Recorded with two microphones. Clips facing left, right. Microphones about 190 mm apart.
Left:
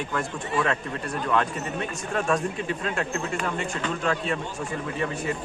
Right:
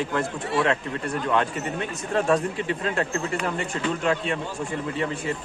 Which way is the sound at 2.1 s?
35° right (ahead or behind).